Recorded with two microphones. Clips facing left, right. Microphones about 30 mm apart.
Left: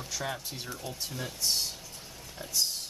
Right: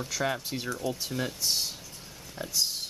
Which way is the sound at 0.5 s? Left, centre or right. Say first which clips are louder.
Right 6 dB; right.